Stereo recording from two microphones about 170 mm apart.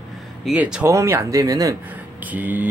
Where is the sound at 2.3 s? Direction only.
10° right (ahead or behind).